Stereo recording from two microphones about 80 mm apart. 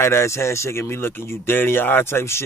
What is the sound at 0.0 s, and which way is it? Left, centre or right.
Speech, left.